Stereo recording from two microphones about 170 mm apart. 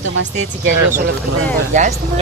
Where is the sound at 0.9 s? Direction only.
50° right (ahead or behind).